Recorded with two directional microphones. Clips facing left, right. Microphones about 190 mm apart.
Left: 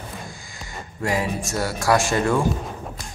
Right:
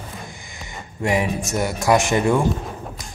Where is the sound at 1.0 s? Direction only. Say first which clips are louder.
Right 3 dB; 20° right (ahead or behind).